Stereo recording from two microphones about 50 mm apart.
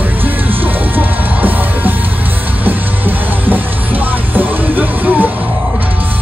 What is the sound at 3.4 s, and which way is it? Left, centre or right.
Music, right.